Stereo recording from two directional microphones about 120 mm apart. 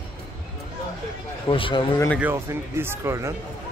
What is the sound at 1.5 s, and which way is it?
Speech, 45° left (ahead or behind).